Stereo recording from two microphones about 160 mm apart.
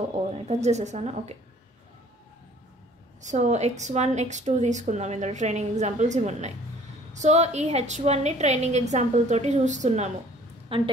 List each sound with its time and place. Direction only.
0.1 s a woman's voice: 45° right (ahead or behind)
3.2 s a woman's voice: 50° right (ahead or behind)